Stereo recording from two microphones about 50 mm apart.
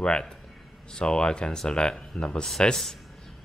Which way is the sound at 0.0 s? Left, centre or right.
Centre.